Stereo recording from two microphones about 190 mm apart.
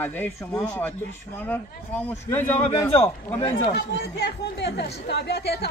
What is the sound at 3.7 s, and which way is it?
Speech, 60° left (ahead or behind).